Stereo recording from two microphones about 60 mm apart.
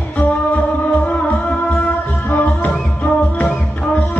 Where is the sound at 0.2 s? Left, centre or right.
Left.